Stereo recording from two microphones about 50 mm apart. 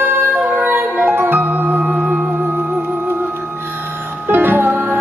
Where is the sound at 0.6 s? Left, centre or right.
Right.